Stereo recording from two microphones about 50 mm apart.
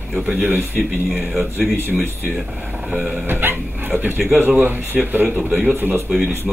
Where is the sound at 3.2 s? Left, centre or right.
Right.